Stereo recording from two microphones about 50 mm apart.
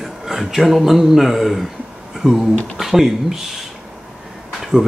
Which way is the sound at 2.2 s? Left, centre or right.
Centre.